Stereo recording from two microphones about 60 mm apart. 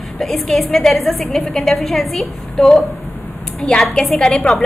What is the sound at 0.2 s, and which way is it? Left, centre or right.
A woman's voice, centre.